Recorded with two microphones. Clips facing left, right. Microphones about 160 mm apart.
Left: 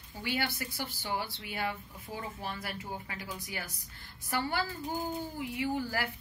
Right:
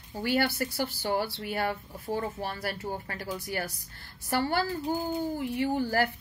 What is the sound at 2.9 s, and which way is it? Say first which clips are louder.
Speech: right 5 dB; 55° right (ahead or behind).